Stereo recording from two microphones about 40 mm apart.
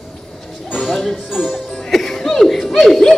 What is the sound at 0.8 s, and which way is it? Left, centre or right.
Music, centre.